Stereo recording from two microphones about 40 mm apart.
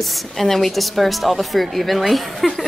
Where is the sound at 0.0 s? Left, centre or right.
Centre.